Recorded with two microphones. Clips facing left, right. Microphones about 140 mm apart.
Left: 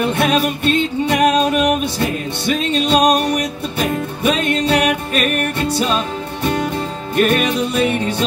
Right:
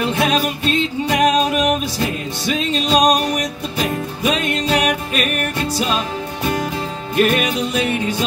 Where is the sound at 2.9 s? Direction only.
Centre (ahead or behind).